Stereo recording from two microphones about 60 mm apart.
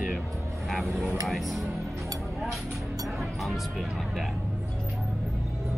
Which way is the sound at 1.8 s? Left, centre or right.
Right.